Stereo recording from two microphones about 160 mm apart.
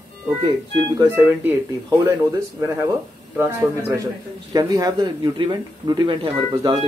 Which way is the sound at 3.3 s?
20° right (ahead or behind).